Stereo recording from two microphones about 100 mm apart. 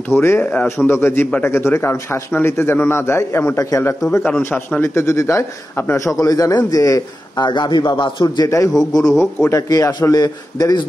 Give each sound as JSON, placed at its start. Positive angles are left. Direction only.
{"t": 0.1, "sound": "speech", "side_deg": 25}
{"t": 7.4, "sound": "a man's voice", "side_deg": 50}
{"t": 8.5, "sound": "a man's voice", "side_deg": 35}